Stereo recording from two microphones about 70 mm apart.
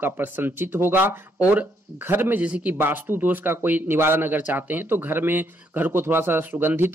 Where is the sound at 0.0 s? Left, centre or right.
Right.